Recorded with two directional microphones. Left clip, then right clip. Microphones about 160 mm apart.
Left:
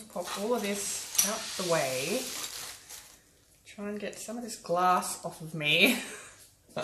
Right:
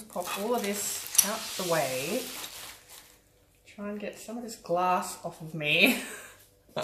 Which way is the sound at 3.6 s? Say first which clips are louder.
Even; 25° left (ahead or behind).